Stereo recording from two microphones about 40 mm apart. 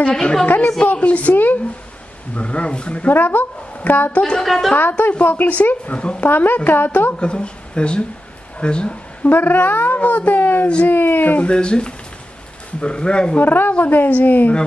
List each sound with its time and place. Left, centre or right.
0.1 s speech: centre
0.5 s speech: left
1.3 s speech: left
2.3 s speech: left
3.1 s speech: left
4.2 s a woman's voice: centre
5.2 s speech: left
5.9 s speech: left
6.2 s speech: left
7.2 s speech: left
9.2 s speech: left
9.9 s speech: left
11.3 s speech: left
13.4 s speech: left